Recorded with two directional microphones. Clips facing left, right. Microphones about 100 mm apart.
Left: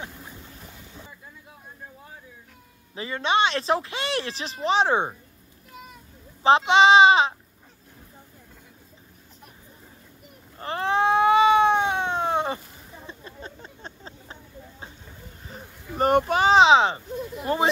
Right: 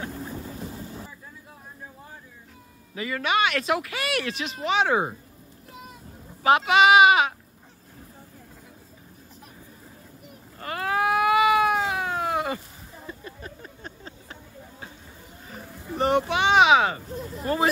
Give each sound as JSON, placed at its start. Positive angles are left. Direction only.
{"t": 2.9, "sound": "speech", "side_deg": 30}
{"t": 6.4, "sound": "speech", "side_deg": 30}
{"t": 10.6, "sound": "cat", "side_deg": 30}
{"t": 13.0, "sound": "a sound", "side_deg": 25}
{"t": 16.0, "sound": "speech", "side_deg": 45}